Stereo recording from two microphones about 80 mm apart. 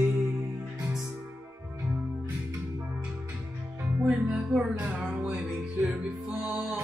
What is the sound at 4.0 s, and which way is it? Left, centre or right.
Music, centre.